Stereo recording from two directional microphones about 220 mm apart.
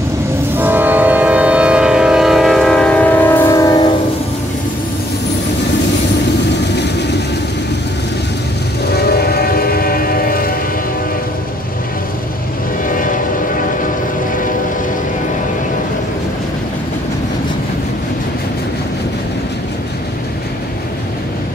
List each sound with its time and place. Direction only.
0.6 s train: 10° right (ahead or behind); by 3.7 s 15° left (ahead or behind)
8.9 s train: 45° left (ahead or behind)
12.8 s train: 35° left (ahead or behind)